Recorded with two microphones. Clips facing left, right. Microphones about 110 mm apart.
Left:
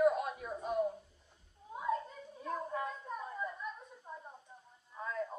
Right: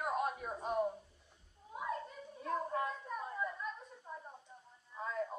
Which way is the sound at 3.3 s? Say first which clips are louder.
Right 1 dB; 5° left (ahead or behind).